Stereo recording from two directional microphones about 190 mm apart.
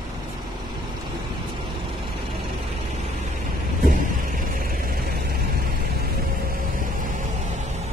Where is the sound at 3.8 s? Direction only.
50° right (ahead or behind).